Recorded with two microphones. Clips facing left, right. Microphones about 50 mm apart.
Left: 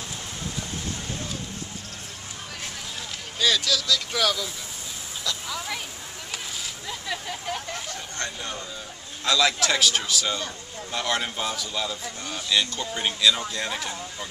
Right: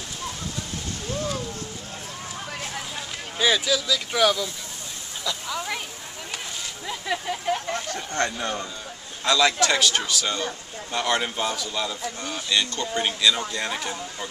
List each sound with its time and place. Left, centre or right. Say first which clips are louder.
3.3 s speech: right 2 dB; centre
5.2 s a sound: right 3 dB; centre
6.9 s hubbub: right 5 dB; centre
7.9 s speech: right 7 dB; right
9.2 s a man's voice: right 2 dB; centre